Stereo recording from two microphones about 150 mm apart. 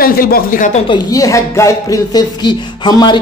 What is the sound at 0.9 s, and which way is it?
Speech, 25° left (ahead or behind).